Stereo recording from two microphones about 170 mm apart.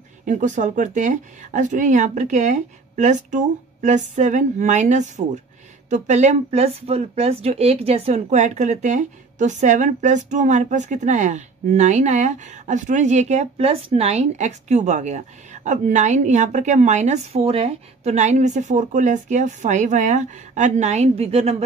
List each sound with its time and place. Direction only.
0.2 s speech: 45° right (ahead or behind)